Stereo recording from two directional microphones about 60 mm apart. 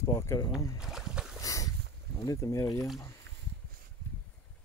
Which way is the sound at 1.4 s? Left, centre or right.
Left.